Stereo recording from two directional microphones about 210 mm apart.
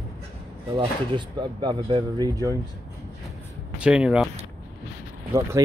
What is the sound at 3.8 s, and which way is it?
Speech, 5° right (ahead or behind).